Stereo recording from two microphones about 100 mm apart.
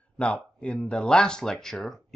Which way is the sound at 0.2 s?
10° left (ahead or behind).